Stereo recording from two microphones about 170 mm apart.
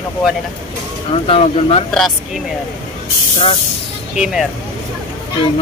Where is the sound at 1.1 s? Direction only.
35° left (ahead or behind).